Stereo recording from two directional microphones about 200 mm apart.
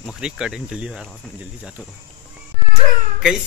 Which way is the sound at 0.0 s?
5° right (ahead or behind).